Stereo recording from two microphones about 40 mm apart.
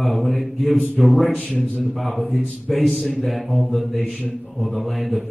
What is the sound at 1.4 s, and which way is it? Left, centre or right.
Speech, left.